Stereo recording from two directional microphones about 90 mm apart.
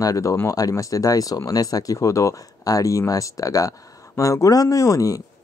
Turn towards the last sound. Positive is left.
turn(degrees=40)  # may be behind; listen again after turning